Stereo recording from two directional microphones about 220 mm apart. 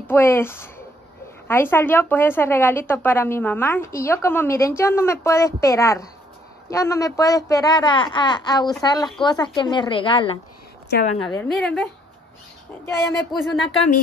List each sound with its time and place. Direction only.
0.0 s a woman's voice: 10° left (ahead or behind)
11.2 s a woman's voice: centre (ahead or behind)
13.3 s a woman's voice: centre (ahead or behind)